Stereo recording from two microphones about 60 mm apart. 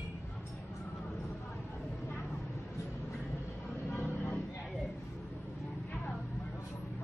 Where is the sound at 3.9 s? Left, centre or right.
Left.